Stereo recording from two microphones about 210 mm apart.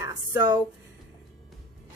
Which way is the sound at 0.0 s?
15° right (ahead or behind).